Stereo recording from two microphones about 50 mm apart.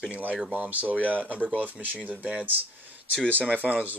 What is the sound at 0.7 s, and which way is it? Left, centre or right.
Speech, right.